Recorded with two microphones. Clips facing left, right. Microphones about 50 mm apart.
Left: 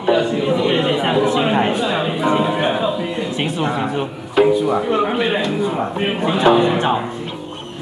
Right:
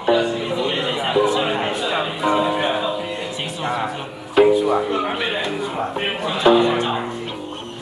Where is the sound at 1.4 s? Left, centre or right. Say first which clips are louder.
Left 4 dB; centre.